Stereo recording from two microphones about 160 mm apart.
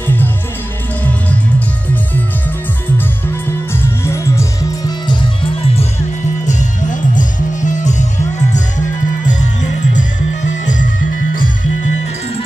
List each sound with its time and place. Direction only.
3.7 s music: 15° left (ahead or behind)
6.4 s music: 50° left (ahead or behind)
9.3 s music: 50° left (ahead or behind)